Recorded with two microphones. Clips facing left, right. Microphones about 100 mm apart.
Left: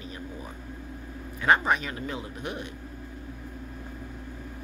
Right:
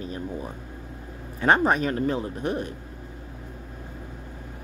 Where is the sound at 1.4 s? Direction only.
35° right (ahead or behind).